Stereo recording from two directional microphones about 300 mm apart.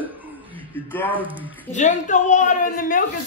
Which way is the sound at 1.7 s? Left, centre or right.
Left.